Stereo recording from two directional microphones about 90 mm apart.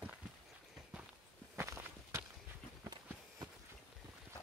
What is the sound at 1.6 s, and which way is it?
Walk, 30° right (ahead or behind).